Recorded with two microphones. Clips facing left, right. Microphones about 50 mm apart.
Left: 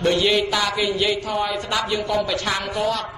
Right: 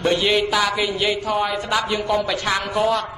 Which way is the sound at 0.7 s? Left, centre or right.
Centre.